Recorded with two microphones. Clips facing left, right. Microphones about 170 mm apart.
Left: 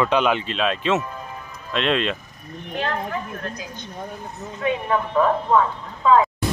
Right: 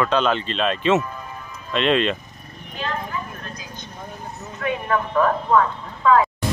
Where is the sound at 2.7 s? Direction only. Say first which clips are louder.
Left 2 dB; 60° left (ahead or behind).